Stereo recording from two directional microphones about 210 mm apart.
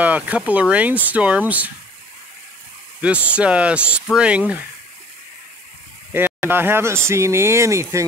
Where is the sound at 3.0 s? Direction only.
5° right (ahead or behind).